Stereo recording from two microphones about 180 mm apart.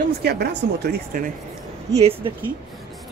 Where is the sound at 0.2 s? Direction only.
65° right (ahead or behind).